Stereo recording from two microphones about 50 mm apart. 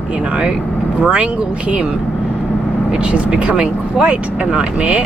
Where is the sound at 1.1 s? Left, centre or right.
Right.